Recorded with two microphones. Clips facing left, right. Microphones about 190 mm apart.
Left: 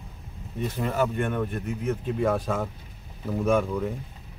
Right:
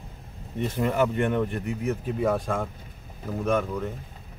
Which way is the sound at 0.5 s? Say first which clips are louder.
Right 2 dB; 20° right (ahead or behind).